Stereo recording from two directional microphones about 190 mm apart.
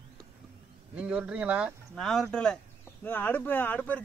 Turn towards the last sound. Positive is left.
turn(degrees=5)  # may be behind; listen again after turning